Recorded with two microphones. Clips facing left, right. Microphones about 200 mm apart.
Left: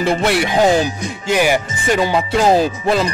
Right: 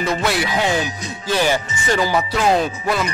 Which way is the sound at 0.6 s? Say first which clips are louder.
Left 7 dB; 40° left (ahead or behind).